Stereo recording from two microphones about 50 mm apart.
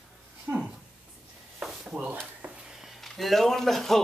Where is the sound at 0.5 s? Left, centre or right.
Right.